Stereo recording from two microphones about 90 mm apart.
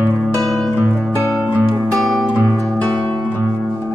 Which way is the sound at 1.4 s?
15° right (ahead or behind).